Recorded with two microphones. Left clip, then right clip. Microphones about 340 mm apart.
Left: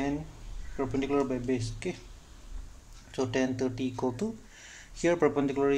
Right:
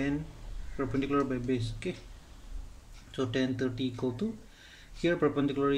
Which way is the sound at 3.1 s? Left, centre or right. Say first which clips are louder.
Left 2 dB; centre.